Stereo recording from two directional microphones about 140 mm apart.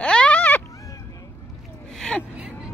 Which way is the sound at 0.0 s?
5° left (ahead or behind).